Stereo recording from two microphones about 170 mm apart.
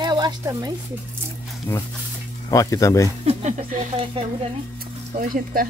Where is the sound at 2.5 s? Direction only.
20° left (ahead or behind).